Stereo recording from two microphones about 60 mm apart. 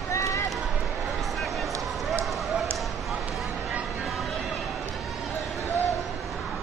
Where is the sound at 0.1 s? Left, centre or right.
Left.